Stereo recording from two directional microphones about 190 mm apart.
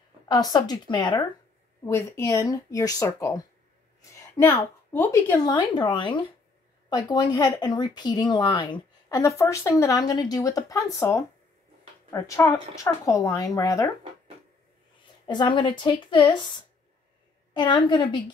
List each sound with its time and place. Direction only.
0.3 s speech: 20° left (ahead or behind)
1.9 s speech: 15° left (ahead or behind)
4.9 s speech: 10° left (ahead or behind)
5.5 s speech: 25° left (ahead or behind)
15.2 s speech: 25° left (ahead or behind)
17.6 s speech: 25° left (ahead or behind)